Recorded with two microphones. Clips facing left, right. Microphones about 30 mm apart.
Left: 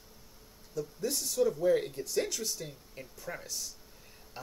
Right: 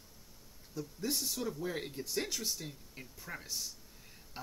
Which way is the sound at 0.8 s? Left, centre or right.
Centre.